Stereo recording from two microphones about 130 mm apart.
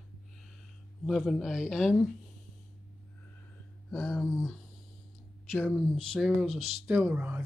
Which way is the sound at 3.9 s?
Centre (ahead or behind).